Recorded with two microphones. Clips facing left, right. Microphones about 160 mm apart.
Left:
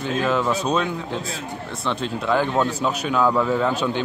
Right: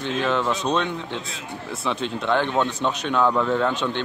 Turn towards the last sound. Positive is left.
turn(degrees=5)  # may be behind; listen again after turning